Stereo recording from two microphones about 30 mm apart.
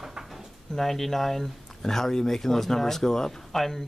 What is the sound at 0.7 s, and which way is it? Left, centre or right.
Speech, centre.